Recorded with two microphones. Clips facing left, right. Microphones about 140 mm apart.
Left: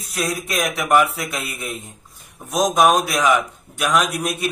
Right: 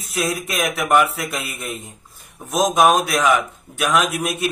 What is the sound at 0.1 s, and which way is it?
A man's voice, centre (ahead or behind).